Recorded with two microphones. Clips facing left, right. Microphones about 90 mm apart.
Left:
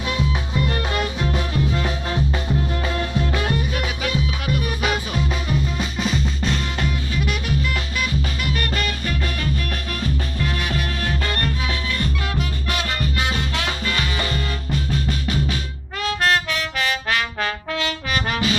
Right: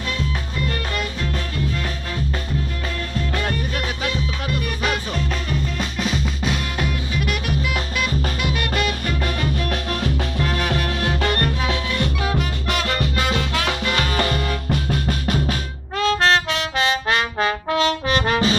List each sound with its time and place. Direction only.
0.9 s music: 20° left (ahead or behind)
4.8 s music: 10° left (ahead or behind); by 8.9 s 10° right (ahead or behind)
10.0 s music: 55° right (ahead or behind)
12.4 s music: 55° right (ahead or behind)
13.0 s music: 70° right (ahead or behind); by 15.5 s 50° right (ahead or behind)
16.0 s music: 30° right (ahead or behind)
16.7 s trombone: 25° right (ahead or behind)